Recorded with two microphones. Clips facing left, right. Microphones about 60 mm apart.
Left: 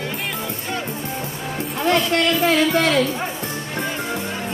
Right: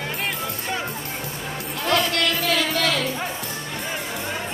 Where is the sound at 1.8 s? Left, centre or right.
Left.